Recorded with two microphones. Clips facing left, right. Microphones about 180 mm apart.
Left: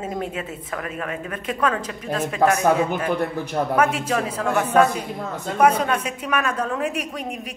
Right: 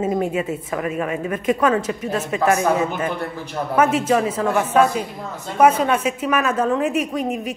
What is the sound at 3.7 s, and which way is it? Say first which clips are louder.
A woman's voice: right 6 dB; 5° right (ahead or behind).